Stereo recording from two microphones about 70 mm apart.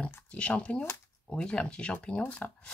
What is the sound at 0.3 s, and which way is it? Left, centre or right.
Speech, centre.